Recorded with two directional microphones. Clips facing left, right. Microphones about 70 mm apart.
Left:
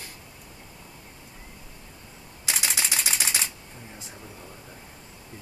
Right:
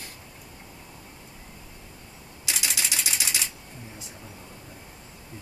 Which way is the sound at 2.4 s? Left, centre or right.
Left.